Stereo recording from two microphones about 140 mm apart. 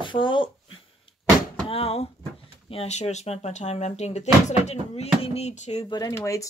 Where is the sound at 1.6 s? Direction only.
45° left (ahead or behind).